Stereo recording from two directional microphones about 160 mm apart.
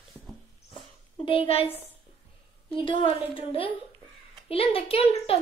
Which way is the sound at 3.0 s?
35° left (ahead or behind).